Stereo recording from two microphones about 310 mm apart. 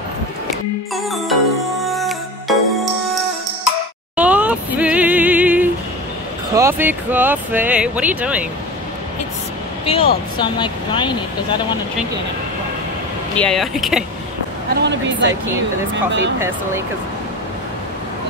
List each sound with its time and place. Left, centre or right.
1.8 s music: centre
4.2 s a sound: centre
6.5 s speech: centre
9.8 s speech: centre
13.4 s speech: centre
14.8 s speech: right
16.3 s speech: centre